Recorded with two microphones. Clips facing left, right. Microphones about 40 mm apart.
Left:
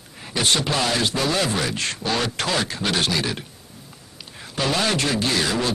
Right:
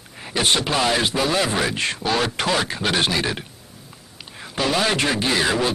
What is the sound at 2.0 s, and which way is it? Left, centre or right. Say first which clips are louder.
Speech: right 2 dB; centre.